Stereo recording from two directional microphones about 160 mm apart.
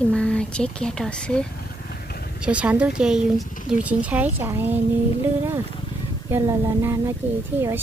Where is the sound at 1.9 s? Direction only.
75° left (ahead or behind).